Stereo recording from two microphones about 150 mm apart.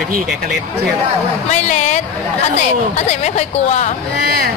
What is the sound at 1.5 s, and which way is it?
Speech, 50° left (ahead or behind).